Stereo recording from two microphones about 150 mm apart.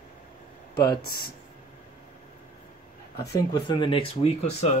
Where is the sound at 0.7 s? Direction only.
85° left.